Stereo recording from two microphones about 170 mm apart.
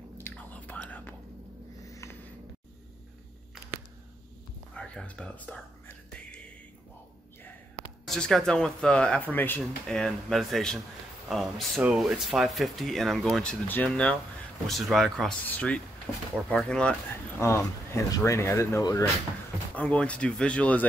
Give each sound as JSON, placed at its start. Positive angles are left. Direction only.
{"t": 0.2, "sound": "whispering", "side_deg": 10}
{"t": 1.9, "sound": "a sound", "side_deg": 15}
{"t": 4.7, "sound": "whispering", "side_deg": 5}
{"t": 8.1, "sound": "speech", "side_deg": 5}
{"t": 17.4, "sound": "speech", "side_deg": 15}
{"t": 19.7, "sound": "speech", "side_deg": 10}